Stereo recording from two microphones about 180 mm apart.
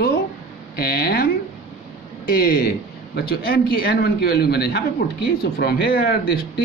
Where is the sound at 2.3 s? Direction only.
55° left (ahead or behind).